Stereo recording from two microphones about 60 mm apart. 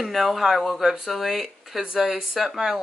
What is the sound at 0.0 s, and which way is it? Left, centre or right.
Speech, centre.